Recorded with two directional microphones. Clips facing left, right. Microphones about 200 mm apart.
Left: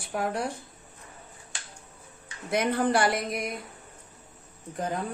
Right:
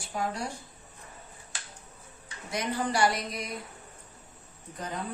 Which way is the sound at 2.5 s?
55° left (ahead or behind).